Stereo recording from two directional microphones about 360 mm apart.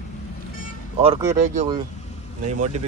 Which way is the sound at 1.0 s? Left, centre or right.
Centre.